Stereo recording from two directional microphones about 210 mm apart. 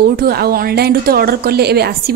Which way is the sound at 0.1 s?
45° right (ahead or behind).